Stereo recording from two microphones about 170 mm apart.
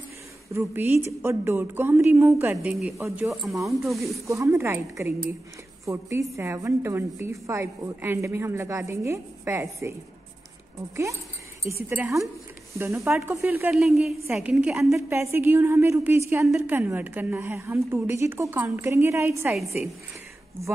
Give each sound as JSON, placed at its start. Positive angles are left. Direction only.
{"t": 0.5, "sound": "a woman's voice", "side_deg": -15}
{"t": 2.5, "sound": "a woman's voice", "side_deg": -5}
{"t": 4.3, "sound": "a woman's voice", "side_deg": -15}
{"t": 11.7, "sound": "a woman's voice", "side_deg": -15}
{"t": 15.0, "sound": "a woman's voice", "side_deg": -15}